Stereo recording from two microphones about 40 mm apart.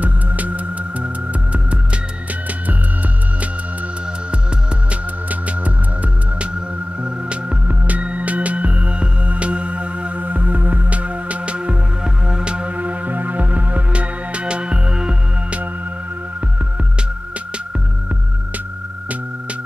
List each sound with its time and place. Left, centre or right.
0.0 s music: right
7.6 s music: right
12.7 s music: right